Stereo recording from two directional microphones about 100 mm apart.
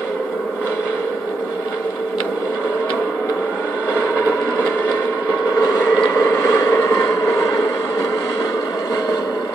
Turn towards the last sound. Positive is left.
turn(degrees=35)  # may be behind; listen again after turning